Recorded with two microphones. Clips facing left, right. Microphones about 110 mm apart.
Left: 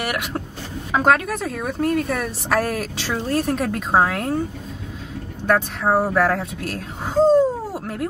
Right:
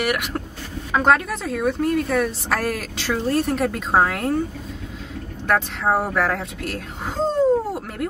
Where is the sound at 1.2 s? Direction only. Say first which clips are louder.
Right 2 dB; 50° left (ahead or behind).